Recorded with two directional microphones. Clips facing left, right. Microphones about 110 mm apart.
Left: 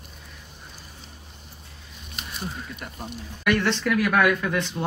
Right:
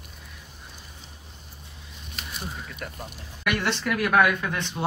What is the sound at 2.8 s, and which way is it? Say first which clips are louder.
Speech: right 2 dB; 5° left (ahead or behind).